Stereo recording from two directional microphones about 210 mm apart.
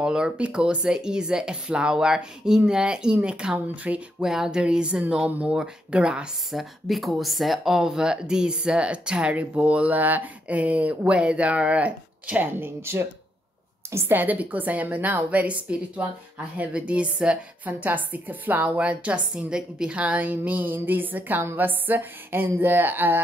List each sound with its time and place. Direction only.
0.0 s a woman's voice: 5° right (ahead or behind)